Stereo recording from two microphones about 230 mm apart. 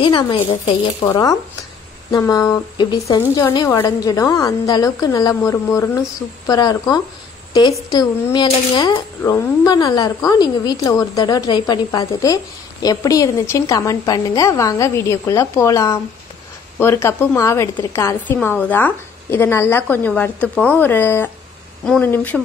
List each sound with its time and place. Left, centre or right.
0.0 s a woman's voice: left